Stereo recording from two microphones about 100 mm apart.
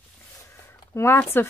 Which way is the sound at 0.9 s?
25° left (ahead or behind).